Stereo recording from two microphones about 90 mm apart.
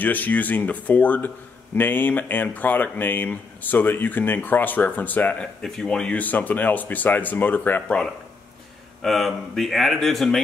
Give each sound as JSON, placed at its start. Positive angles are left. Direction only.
{"t": 0.0, "sound": "speech", "side_deg": 20}
{"t": 9.0, "sound": "speech", "side_deg": 0}